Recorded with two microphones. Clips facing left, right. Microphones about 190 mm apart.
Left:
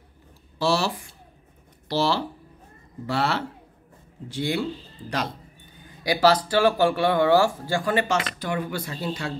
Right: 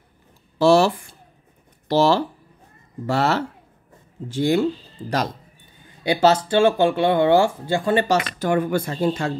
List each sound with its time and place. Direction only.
0.6 s speech: 50° right (ahead or behind)
6.2 s speech: 25° right (ahead or behind)
8.4 s speech: 50° right (ahead or behind)